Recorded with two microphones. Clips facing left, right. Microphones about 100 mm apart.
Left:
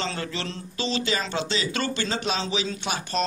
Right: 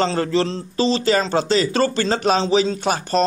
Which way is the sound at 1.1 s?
45° right (ahead or behind).